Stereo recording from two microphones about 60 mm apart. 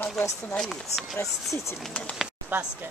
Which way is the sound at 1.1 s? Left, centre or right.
Left.